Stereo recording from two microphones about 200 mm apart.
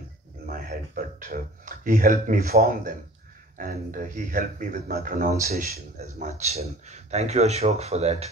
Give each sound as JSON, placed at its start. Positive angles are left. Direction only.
{"t": 0.5, "sound": "speech", "side_deg": -45}